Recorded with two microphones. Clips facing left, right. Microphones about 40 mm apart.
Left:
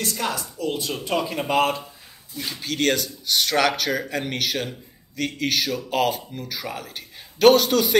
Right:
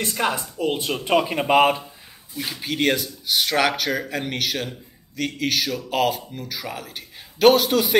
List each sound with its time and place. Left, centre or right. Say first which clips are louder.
0.0 s speech: right 3 dB; right
2.3 s speech: right 1 dB; centre